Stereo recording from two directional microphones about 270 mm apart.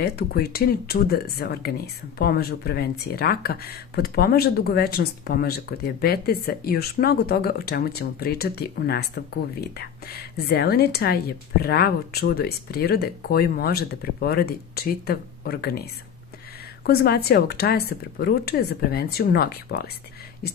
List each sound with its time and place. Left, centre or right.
0.0 s speech: left